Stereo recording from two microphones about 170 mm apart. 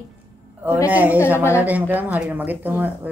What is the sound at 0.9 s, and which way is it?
Speech, 10° right (ahead or behind).